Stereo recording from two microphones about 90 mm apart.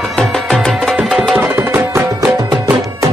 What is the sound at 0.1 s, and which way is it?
Music, 5° left (ahead or behind).